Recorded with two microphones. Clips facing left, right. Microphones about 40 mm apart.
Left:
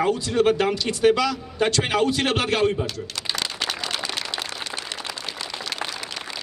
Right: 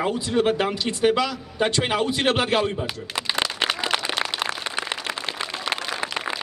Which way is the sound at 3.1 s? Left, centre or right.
Right.